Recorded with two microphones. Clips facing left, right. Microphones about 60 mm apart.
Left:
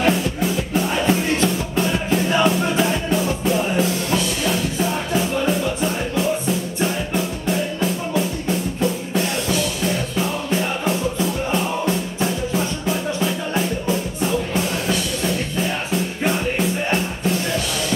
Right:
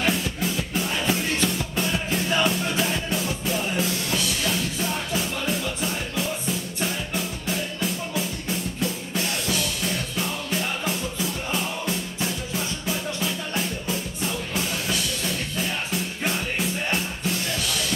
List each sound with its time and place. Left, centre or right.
0.0 s music: centre